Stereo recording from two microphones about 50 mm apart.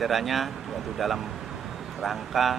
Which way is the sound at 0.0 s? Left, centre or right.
Centre.